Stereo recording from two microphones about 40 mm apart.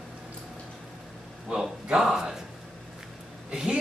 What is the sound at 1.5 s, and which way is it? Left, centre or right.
Speech, centre.